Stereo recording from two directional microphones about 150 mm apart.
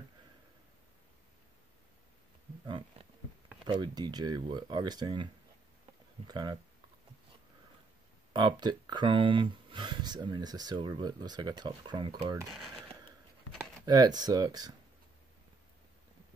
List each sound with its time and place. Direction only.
2.6 s wild animals: 30° right (ahead or behind)
3.6 s speech: 30° right (ahead or behind)
8.4 s speech: 30° right (ahead or behind)
12.4 s speech: centre (ahead or behind)
13.8 s speech: 25° right (ahead or behind)